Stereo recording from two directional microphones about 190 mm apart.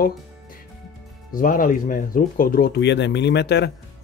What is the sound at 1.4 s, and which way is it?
Speech, 45° left (ahead or behind).